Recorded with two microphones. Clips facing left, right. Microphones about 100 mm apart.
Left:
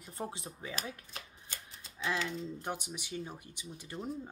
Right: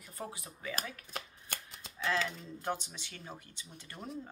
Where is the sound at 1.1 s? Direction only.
60° right (ahead or behind).